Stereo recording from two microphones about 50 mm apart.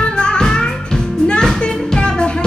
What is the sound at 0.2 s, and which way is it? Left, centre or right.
Music, centre.